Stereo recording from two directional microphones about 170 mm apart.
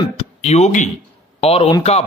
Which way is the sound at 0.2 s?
40° left (ahead or behind).